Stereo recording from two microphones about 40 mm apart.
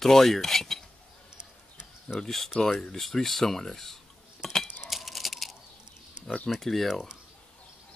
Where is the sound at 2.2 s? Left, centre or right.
Centre.